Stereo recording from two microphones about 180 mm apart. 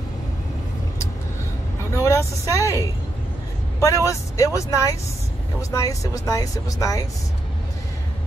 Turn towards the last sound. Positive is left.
turn(degrees=20)  # may be behind; listen again after turning